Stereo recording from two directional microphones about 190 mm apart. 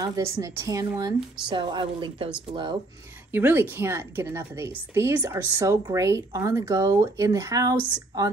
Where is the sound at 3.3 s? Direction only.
10° right (ahead or behind).